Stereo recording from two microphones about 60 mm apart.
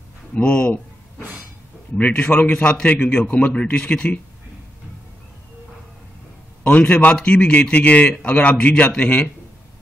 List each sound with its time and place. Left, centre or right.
0.3 s a man's voice: centre
2.0 s a man's voice: left
6.6 s a man's voice: left